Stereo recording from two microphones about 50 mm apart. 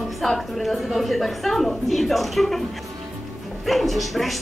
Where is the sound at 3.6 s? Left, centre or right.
Centre.